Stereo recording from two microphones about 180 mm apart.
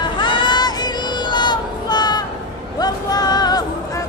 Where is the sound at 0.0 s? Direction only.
25° left (ahead or behind).